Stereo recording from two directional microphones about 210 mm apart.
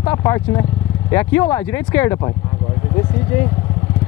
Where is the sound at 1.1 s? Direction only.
10° left (ahead or behind).